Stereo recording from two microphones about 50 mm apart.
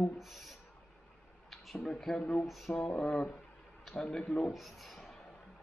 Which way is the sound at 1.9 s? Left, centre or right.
Centre.